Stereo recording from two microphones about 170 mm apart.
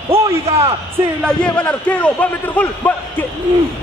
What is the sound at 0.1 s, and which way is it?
Speech, 35° right (ahead or behind).